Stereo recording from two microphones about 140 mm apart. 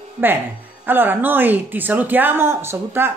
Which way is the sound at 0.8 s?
15° right (ahead or behind).